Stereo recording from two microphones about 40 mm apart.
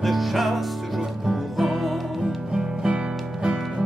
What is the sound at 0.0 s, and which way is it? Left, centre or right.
Music, centre.